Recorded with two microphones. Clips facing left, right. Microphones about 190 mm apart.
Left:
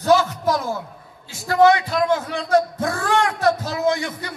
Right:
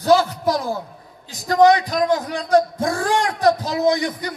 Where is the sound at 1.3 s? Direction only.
15° right (ahead or behind).